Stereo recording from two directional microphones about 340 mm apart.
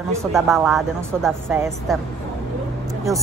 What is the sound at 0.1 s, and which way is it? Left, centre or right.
A woman's voice, centre.